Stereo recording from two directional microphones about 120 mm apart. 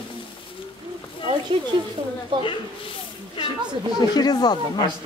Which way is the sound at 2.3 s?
45° right (ahead or behind).